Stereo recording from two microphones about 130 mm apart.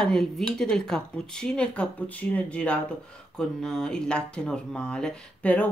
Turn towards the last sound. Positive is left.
turn(degrees=10)  # may be behind; listen again after turning